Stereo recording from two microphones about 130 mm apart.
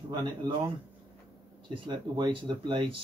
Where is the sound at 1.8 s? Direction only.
35° right (ahead or behind).